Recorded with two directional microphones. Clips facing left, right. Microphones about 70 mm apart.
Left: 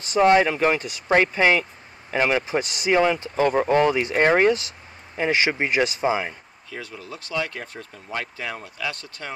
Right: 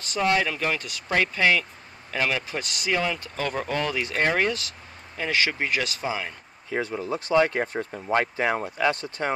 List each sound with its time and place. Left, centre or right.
0.1 s speech: left
3.4 s speech: left
3.7 s speech: left
6.7 s speech: right